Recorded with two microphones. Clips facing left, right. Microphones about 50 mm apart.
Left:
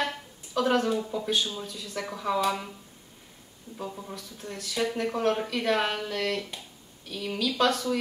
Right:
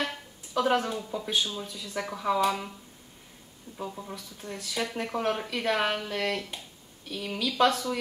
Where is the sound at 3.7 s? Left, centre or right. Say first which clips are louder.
Even; centre.